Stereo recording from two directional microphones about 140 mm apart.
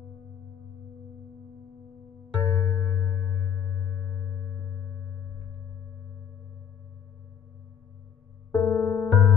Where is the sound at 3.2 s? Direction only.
15° left (ahead or behind).